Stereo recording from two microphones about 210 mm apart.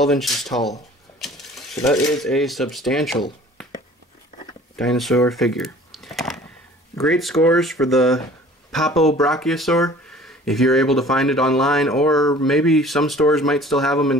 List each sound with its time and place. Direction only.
0.0 s speech: centre (ahead or behind)
1.9 s speech: centre (ahead or behind)
4.7 s speech: centre (ahead or behind)
5.3 s a sound: centre (ahead or behind)
7.0 s speech: centre (ahead or behind)